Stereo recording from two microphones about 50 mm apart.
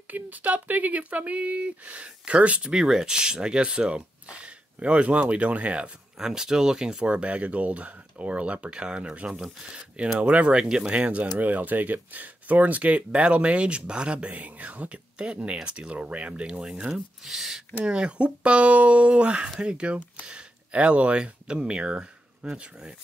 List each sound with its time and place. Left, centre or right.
0.1 s speech: right
2.7 s speech: centre
6.1 s speech: centre; by 10.6 s right
10.6 s speech: centre
11.3 s speech: right; by 16.8 s centre
16.9 s speech: centre
17.8 s speech: centre